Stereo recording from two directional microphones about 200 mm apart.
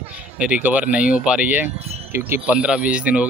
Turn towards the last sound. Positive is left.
turn(degrees=-5)  # may be behind; listen again after turning